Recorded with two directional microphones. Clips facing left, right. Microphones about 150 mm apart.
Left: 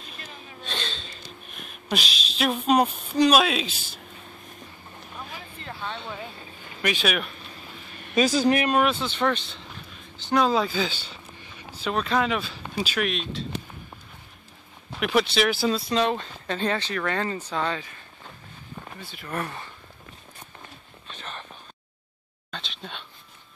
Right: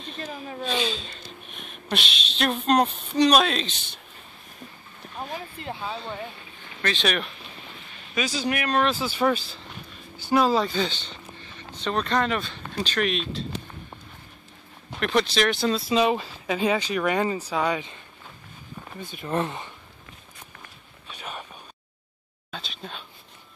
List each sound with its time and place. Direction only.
0.2 s a sound: 40° right (ahead or behind)
0.7 s speech: 5° right (ahead or behind)
5.8 s speech: 5° right (ahead or behind)
6.8 s speech: 10° left (ahead or behind)
8.2 s speech: 45° left (ahead or behind)
8.8 s speech: 5° right (ahead or behind)
14.9 s speech: 5° left (ahead or behind)
18.9 s speech: 20° right (ahead or behind)
21.1 s a sound: 10° right (ahead or behind)
22.5 s a sound: 5° right (ahead or behind)